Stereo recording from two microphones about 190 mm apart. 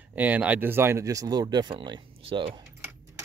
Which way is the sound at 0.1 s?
10° right (ahead or behind).